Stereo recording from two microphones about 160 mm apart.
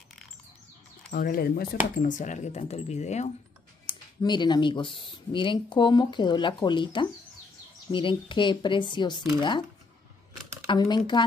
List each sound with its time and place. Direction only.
1.1 s speech: 65° left (ahead or behind)
2.0 s speech: 50° left (ahead or behind)
3.8 s speech: 30° left (ahead or behind)
10.7 s speech: 25° left (ahead or behind)